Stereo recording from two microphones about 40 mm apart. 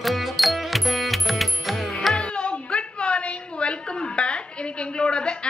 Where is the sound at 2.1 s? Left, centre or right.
Left.